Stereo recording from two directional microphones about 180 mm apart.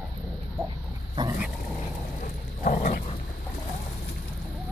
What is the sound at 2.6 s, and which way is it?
Dog, 50° left (ahead or behind).